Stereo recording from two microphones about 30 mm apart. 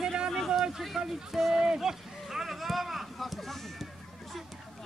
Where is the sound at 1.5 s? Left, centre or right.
Right.